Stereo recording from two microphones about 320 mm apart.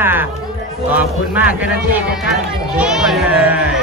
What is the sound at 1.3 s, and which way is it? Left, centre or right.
Speech, centre.